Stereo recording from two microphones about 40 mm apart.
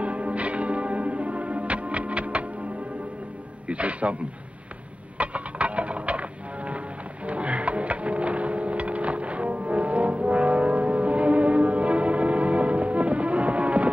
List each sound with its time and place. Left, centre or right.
0.0 s music: right
3.6 s a man's voice: right
5.1 s a sound: right
7.2 s music: right